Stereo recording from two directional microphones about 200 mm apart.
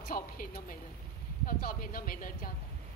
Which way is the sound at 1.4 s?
45° left (ahead or behind).